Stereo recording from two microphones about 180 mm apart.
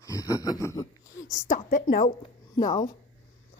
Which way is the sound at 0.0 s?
20° left (ahead or behind).